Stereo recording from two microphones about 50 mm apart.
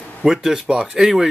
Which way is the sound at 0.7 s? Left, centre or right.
Centre.